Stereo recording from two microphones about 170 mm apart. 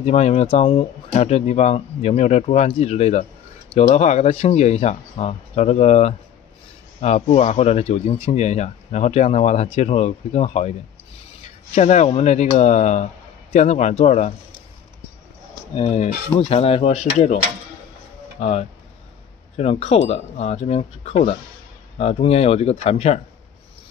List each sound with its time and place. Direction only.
0.0 s speech: 40° left (ahead or behind)
11.7 s speech: 45° left (ahead or behind)
15.7 s speech: 40° left (ahead or behind)
18.4 s speech: 40° left (ahead or behind)